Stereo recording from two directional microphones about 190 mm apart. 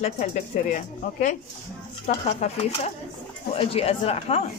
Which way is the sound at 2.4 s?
35° left (ahead or behind).